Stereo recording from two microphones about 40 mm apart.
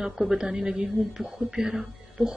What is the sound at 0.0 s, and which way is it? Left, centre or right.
Speech, centre.